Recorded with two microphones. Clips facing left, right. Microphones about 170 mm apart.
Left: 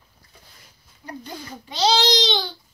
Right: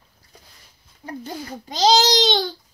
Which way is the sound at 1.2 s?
45° right (ahead or behind).